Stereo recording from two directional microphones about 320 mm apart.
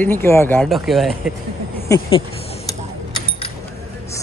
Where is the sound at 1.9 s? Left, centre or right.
Centre.